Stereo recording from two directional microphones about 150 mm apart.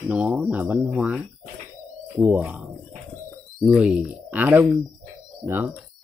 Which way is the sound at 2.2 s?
15° right (ahead or behind).